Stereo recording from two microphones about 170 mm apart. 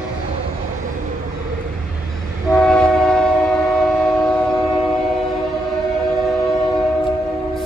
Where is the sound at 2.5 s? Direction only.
5° left (ahead or behind).